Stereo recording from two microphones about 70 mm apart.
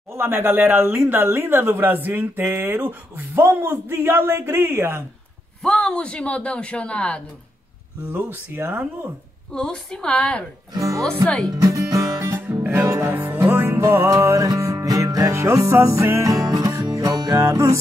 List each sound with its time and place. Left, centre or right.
0.1 s speech: right
5.6 s speech: centre
8.1 s speech: right
9.5 s speech: centre
10.8 s speech: right
11.5 s music: right
13.1 s music: right
13.7 s music: right